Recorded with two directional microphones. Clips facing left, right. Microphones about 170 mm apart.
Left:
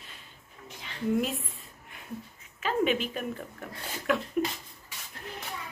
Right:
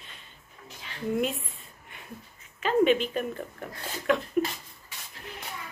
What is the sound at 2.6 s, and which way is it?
Speech, 5° left (ahead or behind).